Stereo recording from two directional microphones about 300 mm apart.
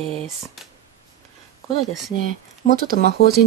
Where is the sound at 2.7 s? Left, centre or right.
Right.